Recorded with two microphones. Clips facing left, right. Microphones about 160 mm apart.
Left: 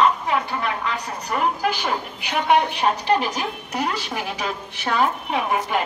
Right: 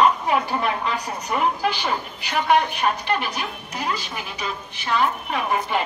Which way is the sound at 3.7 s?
65° left (ahead or behind).